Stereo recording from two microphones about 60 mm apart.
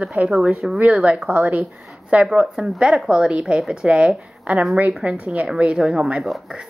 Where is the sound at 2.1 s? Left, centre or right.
Centre.